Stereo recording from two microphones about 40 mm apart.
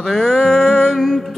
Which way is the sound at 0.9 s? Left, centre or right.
Centre.